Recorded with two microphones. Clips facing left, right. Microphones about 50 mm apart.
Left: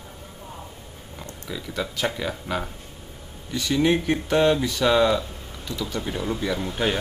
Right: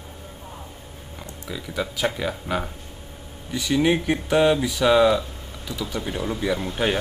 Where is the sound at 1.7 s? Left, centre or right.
Centre.